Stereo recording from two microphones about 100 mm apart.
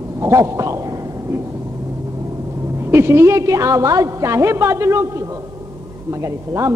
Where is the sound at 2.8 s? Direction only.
25° right (ahead or behind).